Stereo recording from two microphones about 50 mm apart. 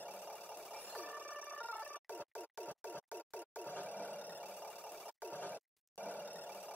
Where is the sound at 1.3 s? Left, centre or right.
Right.